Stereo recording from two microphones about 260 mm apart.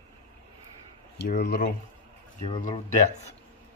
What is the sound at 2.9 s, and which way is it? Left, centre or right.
Speech, left.